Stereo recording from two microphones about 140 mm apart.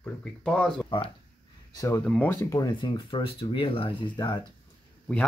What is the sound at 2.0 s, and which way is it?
Speech, 10° left (ahead or behind).